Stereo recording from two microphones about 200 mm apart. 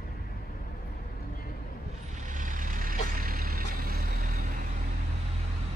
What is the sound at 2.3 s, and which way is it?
Vehicle, 40° right (ahead or behind).